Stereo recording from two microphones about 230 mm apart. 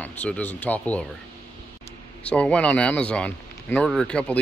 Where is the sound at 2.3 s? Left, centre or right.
Centre.